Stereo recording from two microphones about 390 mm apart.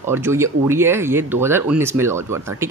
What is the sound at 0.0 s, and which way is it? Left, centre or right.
Speech, centre.